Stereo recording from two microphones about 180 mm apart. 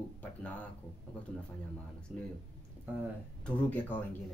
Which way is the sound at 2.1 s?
Centre (ahead or behind).